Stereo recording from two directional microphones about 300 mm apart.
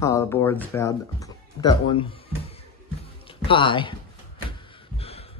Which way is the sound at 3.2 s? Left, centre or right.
Centre.